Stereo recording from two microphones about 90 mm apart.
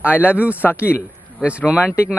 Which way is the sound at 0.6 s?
25° left (ahead or behind).